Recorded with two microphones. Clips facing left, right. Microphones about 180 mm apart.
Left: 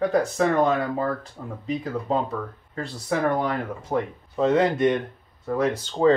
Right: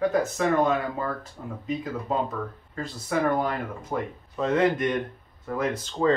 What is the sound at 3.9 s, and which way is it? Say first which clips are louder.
Speech: left 6 dB; 30° left (ahead or behind).